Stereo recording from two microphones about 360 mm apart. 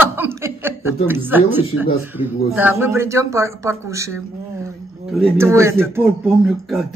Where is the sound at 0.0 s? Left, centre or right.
Centre.